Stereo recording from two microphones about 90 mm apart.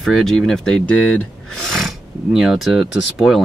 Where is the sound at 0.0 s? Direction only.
5° left (ahead or behind).